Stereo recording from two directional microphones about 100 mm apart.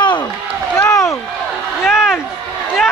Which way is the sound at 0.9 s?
30° left (ahead or behind).